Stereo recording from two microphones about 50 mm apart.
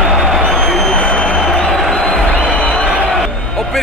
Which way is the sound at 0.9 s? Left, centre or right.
Centre.